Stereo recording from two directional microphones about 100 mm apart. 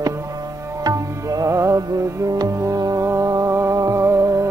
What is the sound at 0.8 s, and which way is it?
Music, 35° right (ahead or behind).